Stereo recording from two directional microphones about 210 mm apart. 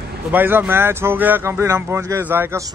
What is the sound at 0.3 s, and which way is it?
Speech, 10° right (ahead or behind).